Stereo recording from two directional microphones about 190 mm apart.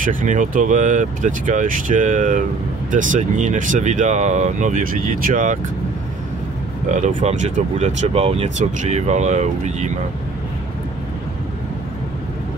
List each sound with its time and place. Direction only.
0.0 s speech: 45° right (ahead or behind)
6.9 s speech: 40° right (ahead or behind)